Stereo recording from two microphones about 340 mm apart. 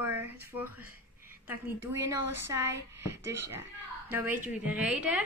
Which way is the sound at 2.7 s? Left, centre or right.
Right.